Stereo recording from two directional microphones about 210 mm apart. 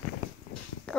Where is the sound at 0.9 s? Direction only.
5° left (ahead or behind).